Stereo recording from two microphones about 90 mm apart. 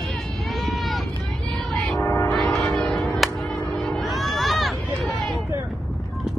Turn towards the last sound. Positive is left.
turn(degrees=0)  # may be behind; listen again after turning